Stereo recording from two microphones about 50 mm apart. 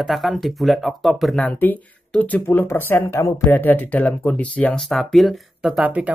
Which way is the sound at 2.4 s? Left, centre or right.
Left.